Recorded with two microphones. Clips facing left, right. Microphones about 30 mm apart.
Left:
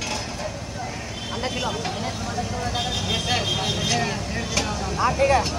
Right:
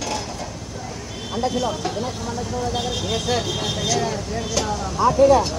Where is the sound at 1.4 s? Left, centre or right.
Left.